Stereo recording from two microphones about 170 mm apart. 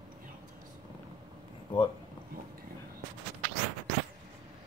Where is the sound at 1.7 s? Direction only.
30° left (ahead or behind).